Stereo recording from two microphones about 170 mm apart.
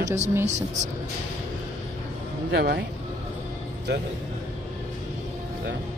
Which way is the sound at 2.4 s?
80° right.